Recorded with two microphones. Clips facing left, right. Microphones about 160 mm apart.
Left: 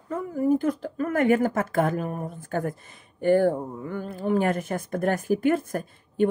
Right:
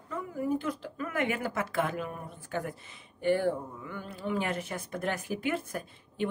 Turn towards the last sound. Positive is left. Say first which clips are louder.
# left 8 dB
turn(degrees=50)  # may be behind; listen again after turning